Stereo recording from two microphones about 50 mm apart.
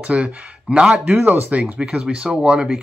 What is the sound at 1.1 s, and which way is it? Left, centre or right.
Speech, right.